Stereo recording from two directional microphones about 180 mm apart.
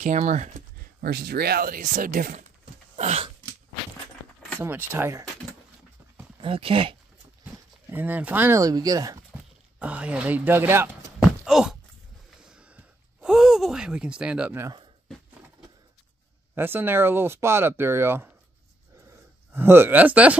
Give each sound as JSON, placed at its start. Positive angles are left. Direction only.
{"t": 0.0, "sound": "speech", "side_deg": -40}
{"t": 1.0, "sound": "speech", "side_deg": -60}
{"t": 2.6, "sound": "a sound", "side_deg": -35}
{"t": 4.6, "sound": "speech", "side_deg": -10}
{"t": 6.4, "sound": "speech", "side_deg": -30}
{"t": 7.9, "sound": "speech", "side_deg": -10}
{"t": 9.8, "sound": "speech", "side_deg": -5}
{"t": 11.4, "sound": "a sound", "side_deg": 0}
{"t": 12.4, "sound": "gasp", "side_deg": -5}
{"t": 16.5, "sound": "speech", "side_deg": -10}
{"t": 19.5, "sound": "speech", "side_deg": -10}